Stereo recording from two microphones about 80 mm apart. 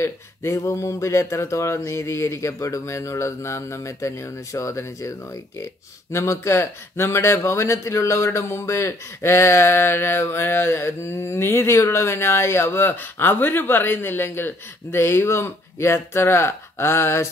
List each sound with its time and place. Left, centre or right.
0.0 s speech: left